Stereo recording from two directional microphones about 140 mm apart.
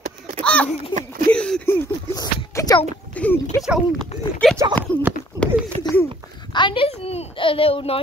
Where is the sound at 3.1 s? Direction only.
10° left (ahead or behind).